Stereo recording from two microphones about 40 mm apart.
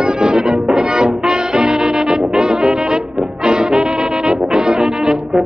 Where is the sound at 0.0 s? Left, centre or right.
Centre.